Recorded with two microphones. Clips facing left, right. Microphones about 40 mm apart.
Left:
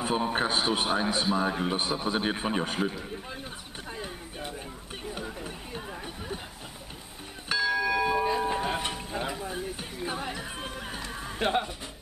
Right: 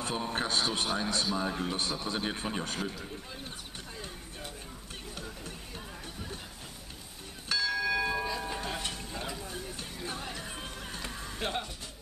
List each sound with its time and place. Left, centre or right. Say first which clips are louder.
0.0 s a man's voice: left 6 dB; centre
3.9 s a sound: left 8 dB; left
5.1 s music: left 6 dB; centre
7.4 s church bell: left 4 dB; centre
8.3 s music: left 8 dB; left